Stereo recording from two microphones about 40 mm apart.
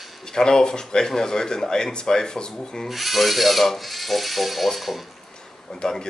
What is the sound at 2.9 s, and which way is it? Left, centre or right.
Speech, centre.